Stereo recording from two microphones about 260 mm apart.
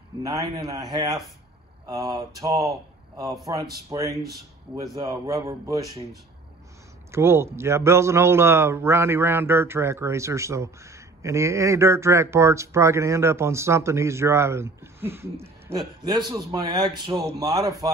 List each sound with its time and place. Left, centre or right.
0.2 s a man's voice: centre
7.1 s a man's voice: centre